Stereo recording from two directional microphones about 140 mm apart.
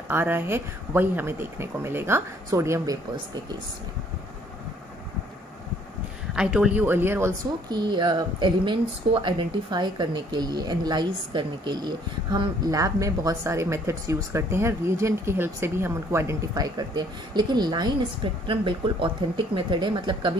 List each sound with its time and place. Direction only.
0.1 s speech: 15° right (ahead or behind)
6.3 s speech: 5° right (ahead or behind)
7.7 s speech: 30° right (ahead or behind)